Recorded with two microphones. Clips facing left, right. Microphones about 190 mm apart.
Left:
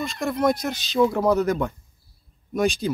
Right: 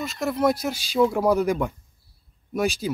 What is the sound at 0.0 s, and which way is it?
Speech, 5° right (ahead or behind).